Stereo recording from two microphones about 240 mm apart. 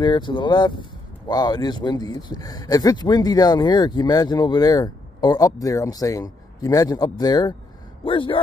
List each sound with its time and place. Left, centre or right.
0.0 s a man's voice: centre